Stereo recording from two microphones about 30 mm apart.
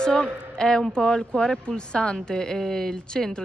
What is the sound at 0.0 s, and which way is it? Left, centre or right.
A man's voice, left.